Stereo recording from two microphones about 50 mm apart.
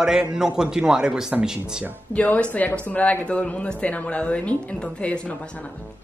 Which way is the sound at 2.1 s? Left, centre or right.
Left.